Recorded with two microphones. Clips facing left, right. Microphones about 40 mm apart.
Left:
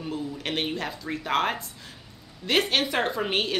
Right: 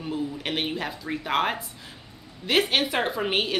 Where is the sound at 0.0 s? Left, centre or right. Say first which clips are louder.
Right 2 dB; centre.